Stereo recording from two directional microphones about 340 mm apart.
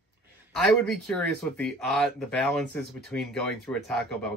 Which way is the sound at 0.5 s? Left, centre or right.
Centre.